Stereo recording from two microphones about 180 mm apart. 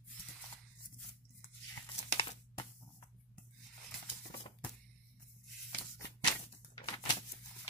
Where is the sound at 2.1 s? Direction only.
30° left (ahead or behind).